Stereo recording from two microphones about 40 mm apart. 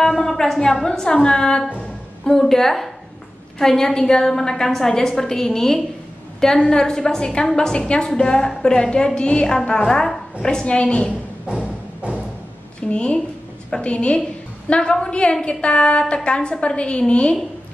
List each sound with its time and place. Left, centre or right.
0.0 s a sound: centre
0.8 s a woman's voice: left
2.2 s a woman's voice: centre; by 9.5 s left
9.8 s a woman's voice: centre
10.4 s a woman's voice: left
12.8 s a woman's voice: left